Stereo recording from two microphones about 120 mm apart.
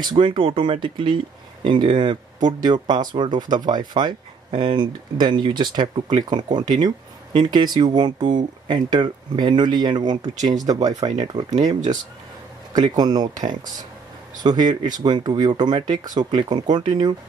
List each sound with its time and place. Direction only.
0.0 s speech: 40° right (ahead or behind)